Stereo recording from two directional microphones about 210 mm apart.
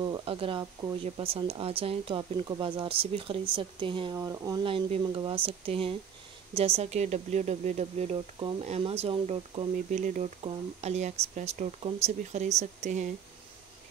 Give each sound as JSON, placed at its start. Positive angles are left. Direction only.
{"t": 0.0, "sound": "speech", "side_deg": -20}